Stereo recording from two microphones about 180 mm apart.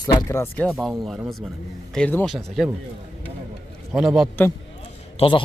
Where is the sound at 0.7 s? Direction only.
Centre (ahead or behind).